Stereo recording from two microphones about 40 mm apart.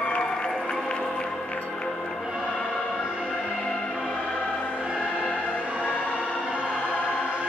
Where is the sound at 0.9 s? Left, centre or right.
Left.